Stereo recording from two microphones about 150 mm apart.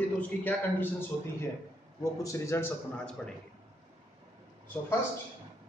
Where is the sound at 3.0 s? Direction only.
5° left (ahead or behind).